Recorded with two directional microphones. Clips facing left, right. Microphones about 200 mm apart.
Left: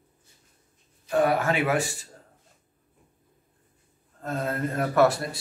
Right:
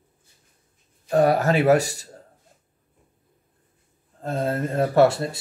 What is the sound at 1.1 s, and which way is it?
Speech, 40° right (ahead or behind).